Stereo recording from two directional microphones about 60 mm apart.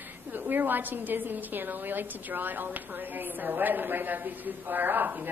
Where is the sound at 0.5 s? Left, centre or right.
Right.